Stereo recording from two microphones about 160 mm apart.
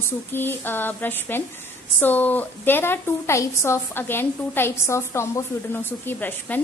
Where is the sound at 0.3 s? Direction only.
15° left (ahead or behind).